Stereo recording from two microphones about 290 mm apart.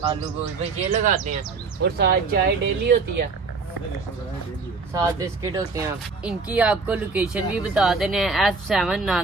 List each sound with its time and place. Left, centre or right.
0.7 s speech: right
4.9 s speech: centre